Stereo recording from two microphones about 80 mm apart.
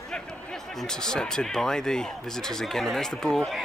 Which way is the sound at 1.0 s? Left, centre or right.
Centre.